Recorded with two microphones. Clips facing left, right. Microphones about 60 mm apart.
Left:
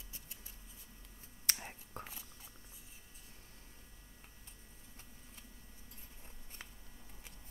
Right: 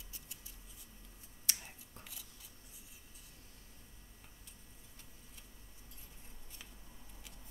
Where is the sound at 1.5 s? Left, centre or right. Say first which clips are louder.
Left 4 dB; left.